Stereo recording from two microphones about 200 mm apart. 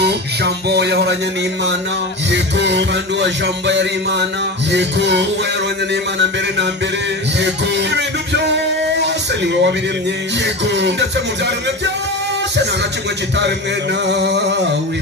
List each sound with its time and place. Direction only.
0.0 s a sound: 55° right (ahead or behind)
2.3 s music: 60° right (ahead or behind)
7.3 s music: 60° right (ahead or behind)
14.0 s music: 60° right (ahead or behind)